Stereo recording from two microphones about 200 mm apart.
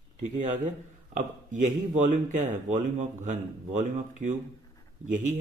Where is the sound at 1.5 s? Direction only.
40° right (ahead or behind).